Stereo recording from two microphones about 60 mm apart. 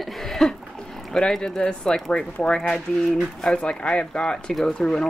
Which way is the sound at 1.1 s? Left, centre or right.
Centre.